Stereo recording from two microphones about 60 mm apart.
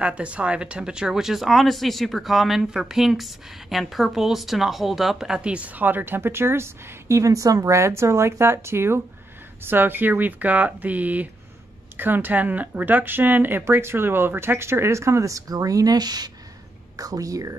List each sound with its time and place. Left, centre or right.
0.0 s speech: centre; by 17.6 s right